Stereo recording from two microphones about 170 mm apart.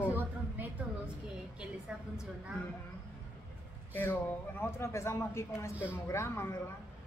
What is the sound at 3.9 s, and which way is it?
Speech, 10° left (ahead or behind).